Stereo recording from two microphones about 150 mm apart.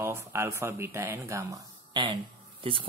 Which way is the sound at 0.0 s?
15° right (ahead or behind).